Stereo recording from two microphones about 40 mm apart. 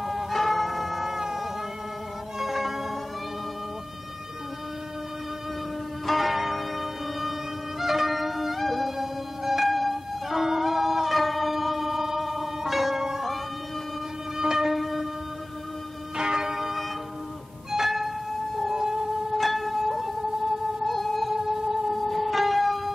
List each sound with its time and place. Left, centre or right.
0.0 s music: centre
6.0 s music: centre
14.4 s music: centre
16.2 s church bell: centre
17.6 s music: centre
18.7 s siren: centre
19.3 s music: centre
21.3 s music: centre
21.9 s music: centre